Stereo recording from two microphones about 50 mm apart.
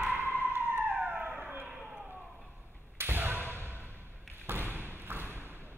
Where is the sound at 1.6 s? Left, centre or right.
Centre.